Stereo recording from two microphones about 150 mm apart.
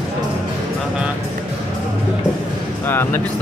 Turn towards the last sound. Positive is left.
turn(degrees=15)  # may be behind; listen again after turning